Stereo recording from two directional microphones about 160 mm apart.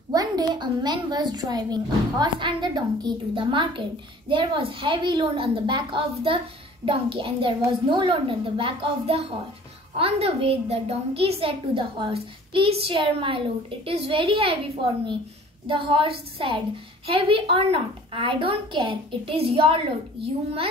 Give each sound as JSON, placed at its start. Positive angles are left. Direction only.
{"t": 0.1, "sound": "a child's voice", "side_deg": -25}
{"t": 15.6, "sound": "a woman's voice", "side_deg": -30}